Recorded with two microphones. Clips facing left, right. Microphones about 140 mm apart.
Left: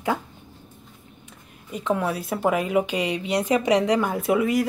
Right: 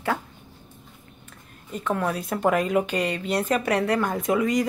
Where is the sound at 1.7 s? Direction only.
10° left (ahead or behind).